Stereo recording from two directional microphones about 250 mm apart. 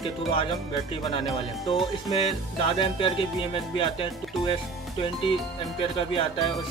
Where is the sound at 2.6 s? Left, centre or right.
Left.